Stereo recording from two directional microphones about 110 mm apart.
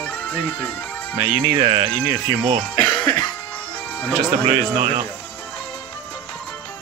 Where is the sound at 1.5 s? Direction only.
50° right (ahead or behind).